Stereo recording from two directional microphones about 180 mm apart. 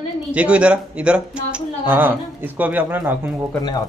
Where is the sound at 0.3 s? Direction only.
5° right (ahead or behind).